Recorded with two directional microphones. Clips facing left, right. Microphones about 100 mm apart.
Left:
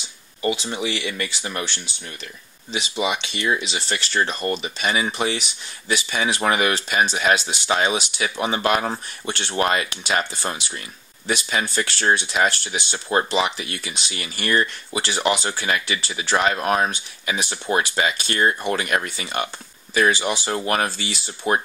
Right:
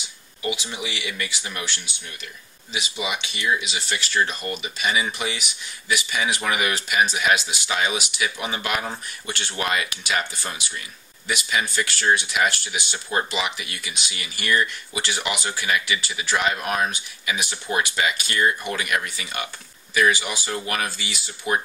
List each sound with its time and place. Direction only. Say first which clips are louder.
0.4 s speech: left 5 dB; 35° left (ahead or behind)